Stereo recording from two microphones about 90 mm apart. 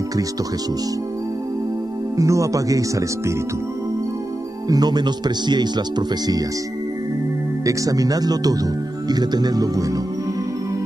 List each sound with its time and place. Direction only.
2.1 s speech: 35° right (ahead or behind)
4.6 s speech: 45° right (ahead or behind)
7.6 s speech: 40° right (ahead or behind)